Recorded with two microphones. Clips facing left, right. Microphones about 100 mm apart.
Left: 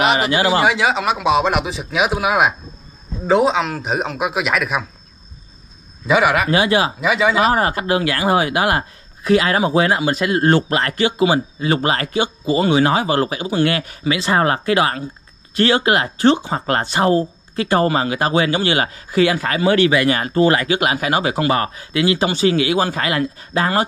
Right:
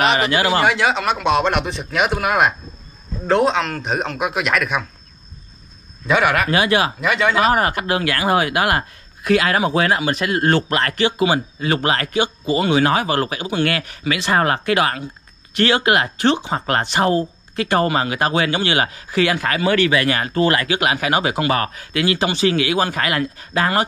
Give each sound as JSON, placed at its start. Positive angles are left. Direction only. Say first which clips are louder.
{"t": 0.3, "sound": "speech", "louder": "left 1 dB", "side_deg": 35}
{"t": 0.6, "sound": "speech", "louder": "left 1 dB", "side_deg": 0}
{"t": 6.0, "sound": "speech", "louder": "left 2 dB", "side_deg": 0}
{"t": 6.6, "sound": "speech", "louder": "even", "side_deg": 25}
{"t": 7.0, "sound": "speech", "louder": "left 1 dB", "side_deg": 0}
{"t": 7.5, "sound": "speech", "louder": "left 1 dB", "side_deg": 30}